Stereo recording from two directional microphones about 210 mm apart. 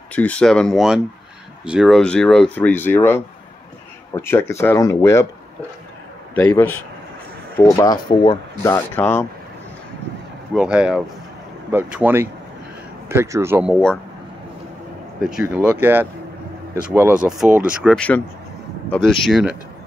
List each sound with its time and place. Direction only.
0.1 s speech: 5° left (ahead or behind)
6.3 s speech: 10° left (ahead or behind)
10.5 s speech: 5° right (ahead or behind)
15.2 s speech: 5° right (ahead or behind)